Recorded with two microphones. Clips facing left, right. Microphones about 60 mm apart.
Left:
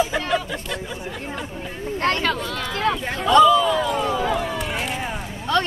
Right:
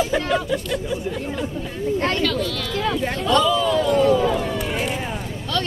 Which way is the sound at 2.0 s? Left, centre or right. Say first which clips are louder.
Left 1 dB; left.